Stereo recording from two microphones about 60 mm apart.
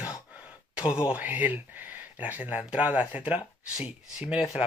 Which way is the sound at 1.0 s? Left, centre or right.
Right.